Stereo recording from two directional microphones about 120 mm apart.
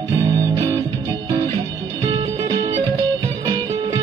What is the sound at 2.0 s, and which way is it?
Music, 35° right (ahead or behind).